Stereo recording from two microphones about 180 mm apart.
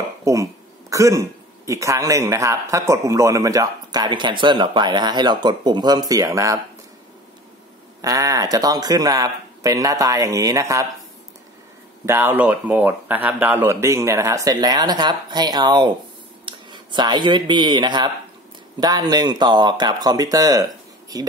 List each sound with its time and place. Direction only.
0.2 s throat clearing: 15° right (ahead or behind)
1.7 s a man's voice: 15° right (ahead or behind)
8.0 s a man's voice: 20° right (ahead or behind)
12.1 s a man's voice: 10° right (ahead or behind)